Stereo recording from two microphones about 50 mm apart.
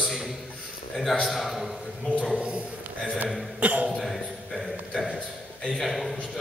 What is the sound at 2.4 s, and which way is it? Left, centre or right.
Speech, right.